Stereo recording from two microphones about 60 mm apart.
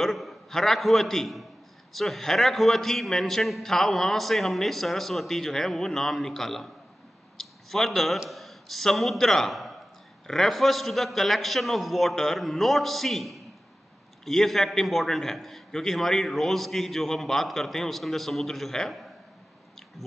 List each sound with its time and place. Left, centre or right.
0.0 s a man's voice: centre